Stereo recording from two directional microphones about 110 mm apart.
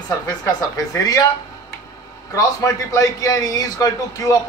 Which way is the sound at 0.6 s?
35° left (ahead or behind).